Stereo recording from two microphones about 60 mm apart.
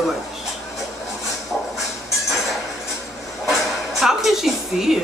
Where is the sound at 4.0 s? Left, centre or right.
Centre.